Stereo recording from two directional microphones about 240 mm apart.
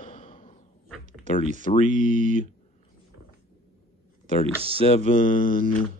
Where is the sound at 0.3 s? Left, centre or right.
Left.